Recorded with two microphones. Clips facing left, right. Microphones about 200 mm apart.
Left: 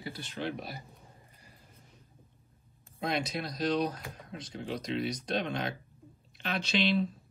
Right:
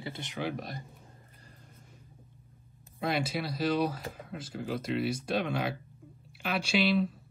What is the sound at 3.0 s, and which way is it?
Speech, 5° right (ahead or behind).